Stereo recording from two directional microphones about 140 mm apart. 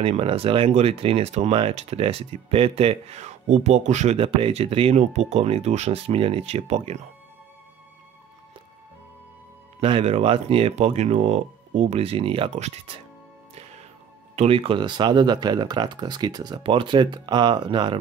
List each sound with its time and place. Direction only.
0.0 s speech: 45° right (ahead or behind)
9.8 s speech: 45° right (ahead or behind)
13.6 s music: 50° right (ahead or behind)
14.3 s speech: 45° right (ahead or behind)